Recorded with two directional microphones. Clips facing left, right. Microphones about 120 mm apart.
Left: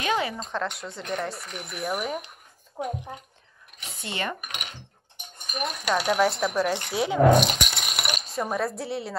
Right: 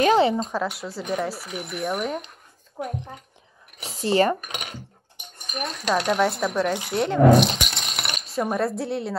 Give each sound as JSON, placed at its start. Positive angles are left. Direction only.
{"t": 0.0, "sound": "a sound", "side_deg": -30}
{"t": 0.5, "sound": "speech", "side_deg": -5}
{"t": 2.8, "sound": "speech", "side_deg": 20}
{"t": 3.8, "sound": "speech", "side_deg": -35}
{"t": 5.6, "sound": "speech", "side_deg": 10}